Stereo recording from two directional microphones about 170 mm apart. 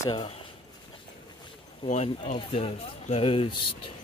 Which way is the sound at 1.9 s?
45° left (ahead or behind).